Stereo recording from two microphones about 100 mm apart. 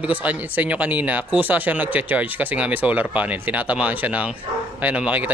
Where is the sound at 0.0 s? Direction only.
15° right (ahead or behind).